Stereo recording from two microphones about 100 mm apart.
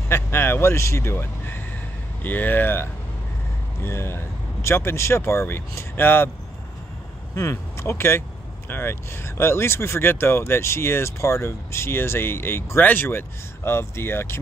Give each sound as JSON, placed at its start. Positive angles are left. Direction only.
{"t": 0.1, "sound": "speech", "side_deg": 25}
{"t": 7.3, "sound": "speech", "side_deg": 30}